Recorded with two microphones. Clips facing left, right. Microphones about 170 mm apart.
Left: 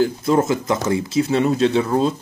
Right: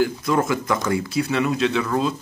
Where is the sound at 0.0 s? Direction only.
25° left (ahead or behind).